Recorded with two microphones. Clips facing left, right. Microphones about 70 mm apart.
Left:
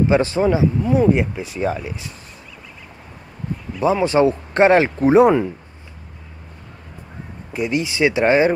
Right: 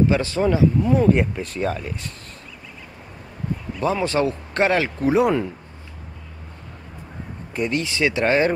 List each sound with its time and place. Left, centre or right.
0.0 s speech: left
0.8 s speech: centre
3.8 s speech: centre
7.5 s speech: centre